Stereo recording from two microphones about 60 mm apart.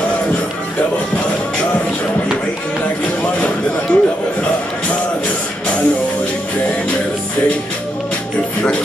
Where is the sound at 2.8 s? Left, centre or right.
Left.